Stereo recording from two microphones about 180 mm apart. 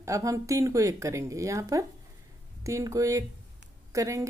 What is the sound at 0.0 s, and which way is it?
A woman's voice, 15° right (ahead or behind).